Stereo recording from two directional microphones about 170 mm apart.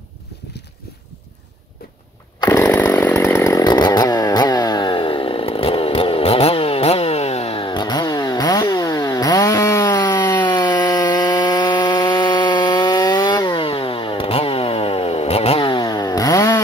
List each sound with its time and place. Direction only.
2.4 s chainsaw: 15° left (ahead or behind)